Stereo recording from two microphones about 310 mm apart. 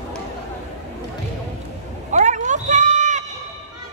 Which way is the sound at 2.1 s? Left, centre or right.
Right.